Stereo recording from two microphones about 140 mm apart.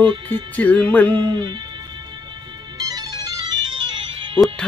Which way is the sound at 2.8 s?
25° right (ahead or behind).